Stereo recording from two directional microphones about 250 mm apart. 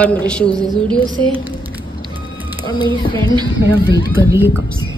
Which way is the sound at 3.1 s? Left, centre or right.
Centre.